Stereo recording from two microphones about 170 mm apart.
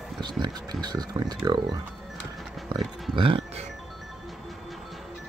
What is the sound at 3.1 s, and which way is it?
Speech, 35° right (ahead or behind).